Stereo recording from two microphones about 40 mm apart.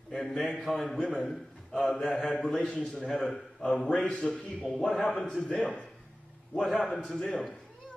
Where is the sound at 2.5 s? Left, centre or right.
Left.